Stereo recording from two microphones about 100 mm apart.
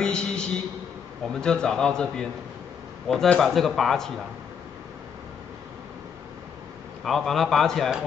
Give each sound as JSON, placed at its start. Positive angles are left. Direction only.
{"t": 0.0, "sound": "a sound", "side_deg": 5}
{"t": 1.3, "sound": "a man's voice", "side_deg": 5}
{"t": 7.1, "sound": "a man's voice", "side_deg": 5}